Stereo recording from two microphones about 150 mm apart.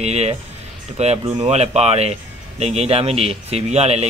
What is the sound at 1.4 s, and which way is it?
Speech, 45° right (ahead or behind).